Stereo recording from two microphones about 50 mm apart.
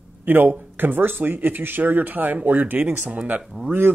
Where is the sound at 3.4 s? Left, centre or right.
Centre.